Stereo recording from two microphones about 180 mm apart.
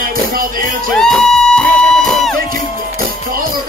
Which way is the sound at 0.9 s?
5° left (ahead or behind).